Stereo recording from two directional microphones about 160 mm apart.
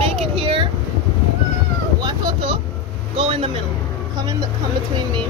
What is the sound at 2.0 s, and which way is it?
Vehicle, 30° right (ahead or behind).